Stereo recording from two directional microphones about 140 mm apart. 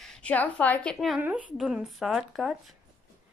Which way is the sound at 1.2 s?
10° right (ahead or behind).